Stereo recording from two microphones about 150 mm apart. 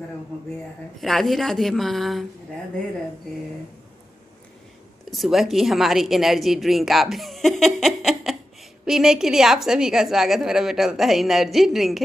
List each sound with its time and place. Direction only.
0.9 s a woman's voice: centre (ahead or behind)
5.1 s a woman's voice: centre (ahead or behind)